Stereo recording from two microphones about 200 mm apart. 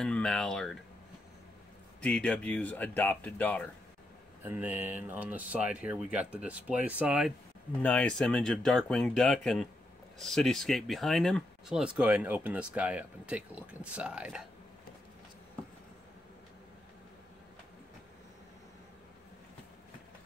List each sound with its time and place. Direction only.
0.0 s speech: 5° left (ahead or behind)
2.0 s speech: 5° left (ahead or behind)
4.5 s speech: 10° right (ahead or behind)
7.8 s speech: 5° left (ahead or behind)